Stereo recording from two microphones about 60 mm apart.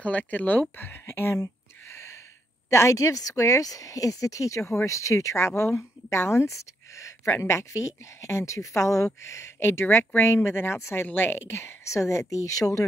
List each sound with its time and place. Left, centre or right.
0.0 s a woman's voice: left